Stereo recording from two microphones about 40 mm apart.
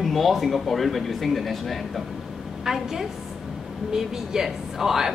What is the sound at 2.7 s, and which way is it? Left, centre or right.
Speech, centre.